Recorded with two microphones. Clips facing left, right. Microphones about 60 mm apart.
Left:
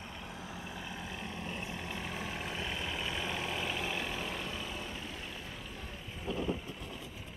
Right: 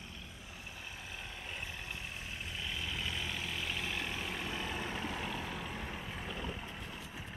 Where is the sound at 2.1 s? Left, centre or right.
Left.